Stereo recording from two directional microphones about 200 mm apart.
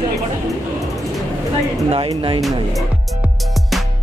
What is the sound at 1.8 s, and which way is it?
Speech, 25° right (ahead or behind).